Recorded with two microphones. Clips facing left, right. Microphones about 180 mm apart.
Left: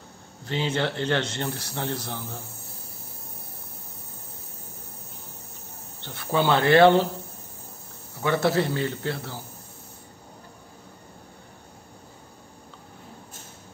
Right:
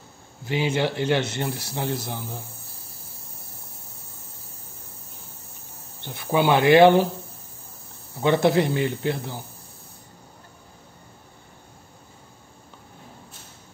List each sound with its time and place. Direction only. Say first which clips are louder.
0.5 s speech: right 3 dB; 10° right (ahead or behind)
6.0 s speech: right 2 dB; 15° right (ahead or behind)
8.2 s speech: right 4 dB; 20° right (ahead or behind)